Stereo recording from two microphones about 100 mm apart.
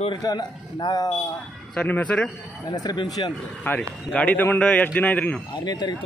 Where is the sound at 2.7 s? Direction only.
45° left (ahead or behind).